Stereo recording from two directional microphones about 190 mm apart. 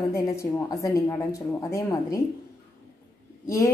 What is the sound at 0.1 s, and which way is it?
A woman's voice, 15° left (ahead or behind).